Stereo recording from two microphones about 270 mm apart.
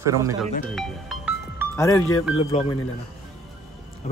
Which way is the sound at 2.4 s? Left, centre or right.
Left.